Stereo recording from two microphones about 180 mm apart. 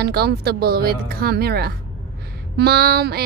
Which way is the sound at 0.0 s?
60° right (ahead or behind).